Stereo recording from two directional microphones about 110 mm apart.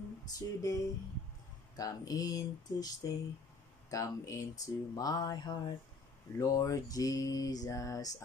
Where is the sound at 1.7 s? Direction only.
35° left (ahead or behind).